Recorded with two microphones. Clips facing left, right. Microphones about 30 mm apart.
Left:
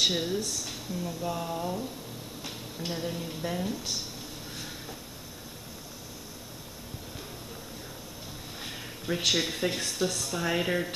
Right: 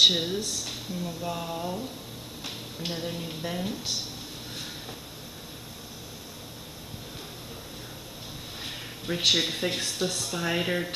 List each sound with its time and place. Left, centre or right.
0.0 s a woman's voice: right
3.0 s a woman's voice: centre
8.6 s speech: centre